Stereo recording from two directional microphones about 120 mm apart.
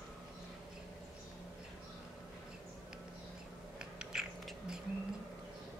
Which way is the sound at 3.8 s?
5° right (ahead or behind).